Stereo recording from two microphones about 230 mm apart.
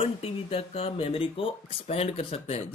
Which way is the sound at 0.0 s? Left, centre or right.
Left.